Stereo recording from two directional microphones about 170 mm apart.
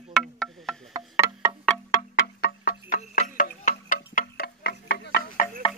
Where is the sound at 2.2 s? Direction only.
65° left (ahead or behind).